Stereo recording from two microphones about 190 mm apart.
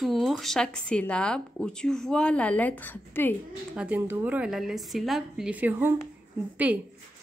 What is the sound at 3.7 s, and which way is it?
Speech, 10° right (ahead or behind).